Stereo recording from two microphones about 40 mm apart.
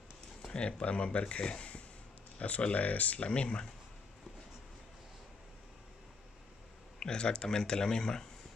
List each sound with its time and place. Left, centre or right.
0.5 s speech: left
3.3 s speech: left
7.0 s speech: left